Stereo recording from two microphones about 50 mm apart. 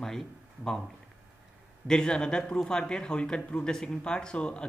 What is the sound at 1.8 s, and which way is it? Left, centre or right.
A man's voice, centre.